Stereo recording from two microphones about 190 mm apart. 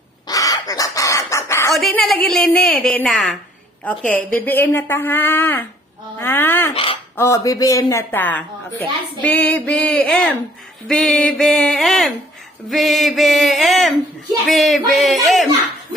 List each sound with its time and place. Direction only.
0.3 s chicken: 20° left (ahead or behind)
1.7 s a woman's voice: centre (ahead or behind)
6.1 s a sound: 10° left (ahead or behind)
6.7 s speech: 30° left (ahead or behind)
7.2 s a woman's voice: 15° left (ahead or behind); by 15.4 s centre (ahead or behind)